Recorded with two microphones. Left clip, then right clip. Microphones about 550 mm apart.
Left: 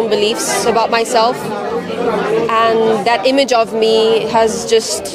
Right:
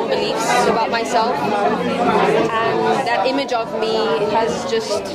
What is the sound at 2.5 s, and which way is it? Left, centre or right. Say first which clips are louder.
Speech: left 5 dB; left.